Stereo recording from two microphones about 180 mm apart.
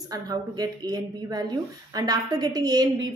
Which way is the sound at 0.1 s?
20° right (ahead or behind).